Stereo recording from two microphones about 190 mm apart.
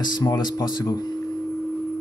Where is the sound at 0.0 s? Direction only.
20° left (ahead or behind).